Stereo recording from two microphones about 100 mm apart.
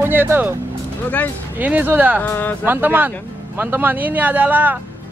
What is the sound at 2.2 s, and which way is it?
Speech, 15° left (ahead or behind).